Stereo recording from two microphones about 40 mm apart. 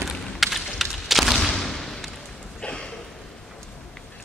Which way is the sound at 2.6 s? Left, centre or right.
Left.